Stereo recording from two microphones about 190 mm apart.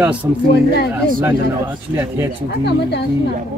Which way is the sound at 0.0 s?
10° right (ahead or behind).